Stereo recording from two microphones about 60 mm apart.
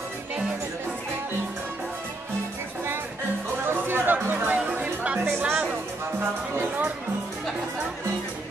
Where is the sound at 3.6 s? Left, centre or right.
Right.